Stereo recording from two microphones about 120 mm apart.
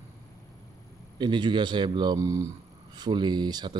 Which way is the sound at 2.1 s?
25° right (ahead or behind).